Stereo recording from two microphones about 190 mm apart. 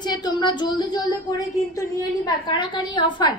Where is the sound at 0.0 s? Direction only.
25° left (ahead or behind).